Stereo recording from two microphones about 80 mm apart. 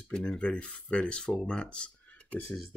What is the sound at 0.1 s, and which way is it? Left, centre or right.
Speech, centre.